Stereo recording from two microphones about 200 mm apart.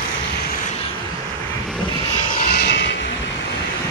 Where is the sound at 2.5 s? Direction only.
60° left (ahead or behind).